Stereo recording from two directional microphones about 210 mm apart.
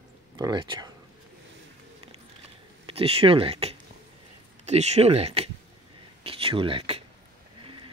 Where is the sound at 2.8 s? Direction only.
30° right (ahead or behind).